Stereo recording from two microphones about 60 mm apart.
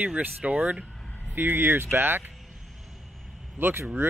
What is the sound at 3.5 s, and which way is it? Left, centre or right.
Speech, right.